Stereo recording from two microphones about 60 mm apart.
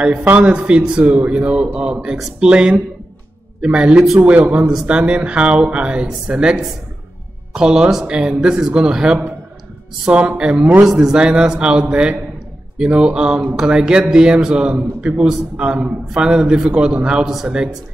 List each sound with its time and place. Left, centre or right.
0.0 s a man's voice: centre
10.9 s a man's voice: centre